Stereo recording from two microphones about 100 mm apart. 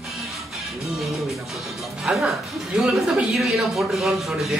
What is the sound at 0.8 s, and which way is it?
Music, centre (ahead or behind).